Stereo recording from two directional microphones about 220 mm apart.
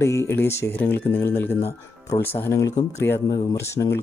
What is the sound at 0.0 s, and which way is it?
Speech, 10° left (ahead or behind).